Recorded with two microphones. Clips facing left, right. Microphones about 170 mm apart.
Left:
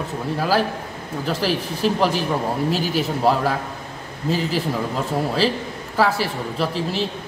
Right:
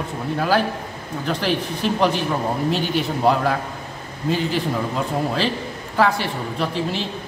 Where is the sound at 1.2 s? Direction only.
5° left (ahead or behind).